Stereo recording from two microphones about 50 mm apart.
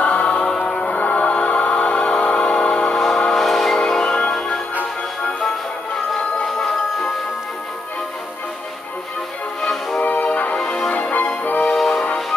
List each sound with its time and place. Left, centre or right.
0.0 s music: left
3.3 s train: centre
3.8 s music: centre
6.4 s music: centre
9.6 s music: centre
10.2 s music: left
10.6 s music: centre
10.9 s music: left
11.7 s music: centre